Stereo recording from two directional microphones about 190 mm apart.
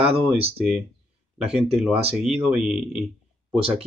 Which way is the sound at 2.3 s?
5° right (ahead or behind).